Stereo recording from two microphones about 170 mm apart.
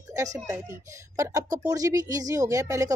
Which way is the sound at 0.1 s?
20° right (ahead or behind).